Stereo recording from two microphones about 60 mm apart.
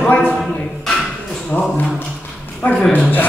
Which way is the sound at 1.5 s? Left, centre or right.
Left.